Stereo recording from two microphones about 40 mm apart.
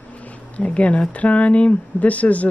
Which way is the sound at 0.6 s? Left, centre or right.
Left.